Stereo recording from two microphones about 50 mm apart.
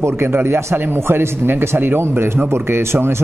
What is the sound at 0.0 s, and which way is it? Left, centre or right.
Speech, right.